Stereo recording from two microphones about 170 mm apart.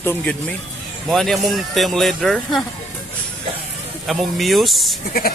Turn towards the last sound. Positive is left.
turn(degrees=0)  # may be behind; listen again after turning